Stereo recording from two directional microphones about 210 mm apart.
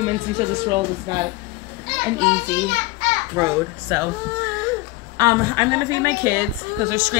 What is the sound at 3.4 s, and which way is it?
Speech, 15° right (ahead or behind).